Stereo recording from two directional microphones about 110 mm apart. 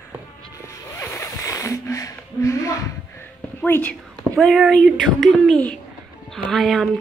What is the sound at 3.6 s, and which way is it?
Speech, 15° left (ahead or behind).